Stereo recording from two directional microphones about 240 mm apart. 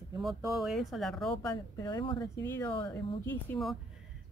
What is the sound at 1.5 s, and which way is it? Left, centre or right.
Speech, centre.